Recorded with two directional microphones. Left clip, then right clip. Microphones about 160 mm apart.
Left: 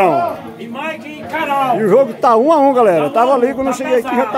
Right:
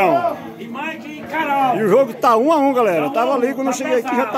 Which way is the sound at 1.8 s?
5° left (ahead or behind).